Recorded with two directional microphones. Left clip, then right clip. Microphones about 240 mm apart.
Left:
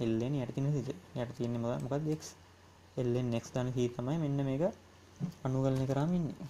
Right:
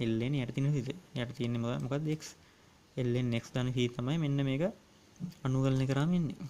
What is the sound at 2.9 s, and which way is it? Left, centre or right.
Speech, right.